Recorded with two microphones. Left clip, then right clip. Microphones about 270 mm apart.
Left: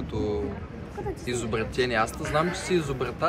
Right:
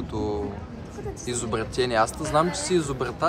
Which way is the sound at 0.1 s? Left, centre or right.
Centre.